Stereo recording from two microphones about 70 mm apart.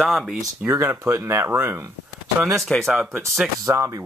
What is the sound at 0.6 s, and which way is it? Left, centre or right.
Speech, right.